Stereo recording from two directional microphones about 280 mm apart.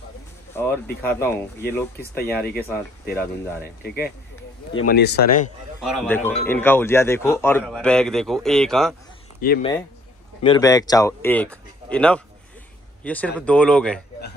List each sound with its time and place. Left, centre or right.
0.5 s speech: centre
4.8 s speech: left
5.8 s a man's voice: centre
9.4 s speech: left
10.4 s a man's voice: centre